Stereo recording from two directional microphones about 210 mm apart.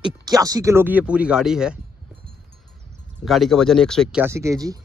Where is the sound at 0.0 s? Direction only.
15° right (ahead or behind).